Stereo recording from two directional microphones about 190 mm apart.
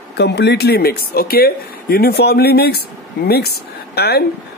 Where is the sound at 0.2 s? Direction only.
60° left (ahead or behind).